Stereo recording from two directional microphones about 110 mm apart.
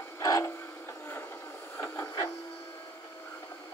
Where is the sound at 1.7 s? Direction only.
15° left (ahead or behind).